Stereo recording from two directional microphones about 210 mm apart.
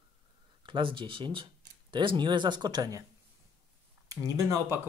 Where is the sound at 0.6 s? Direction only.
25° right (ahead or behind).